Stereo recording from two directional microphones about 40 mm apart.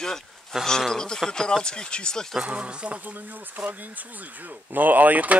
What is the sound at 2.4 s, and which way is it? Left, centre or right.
Speech, right.